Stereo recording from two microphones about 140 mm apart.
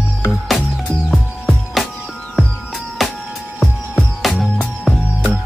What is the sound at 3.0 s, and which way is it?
Music, centre (ahead or behind).